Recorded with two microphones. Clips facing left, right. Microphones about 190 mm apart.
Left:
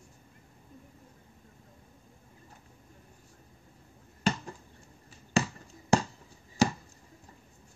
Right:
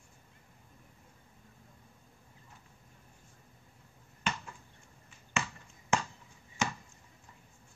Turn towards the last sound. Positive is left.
turn(degrees=35)  # may be behind; listen again after turning